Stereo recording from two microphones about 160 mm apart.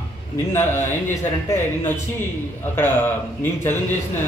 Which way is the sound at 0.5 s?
15° left (ahead or behind).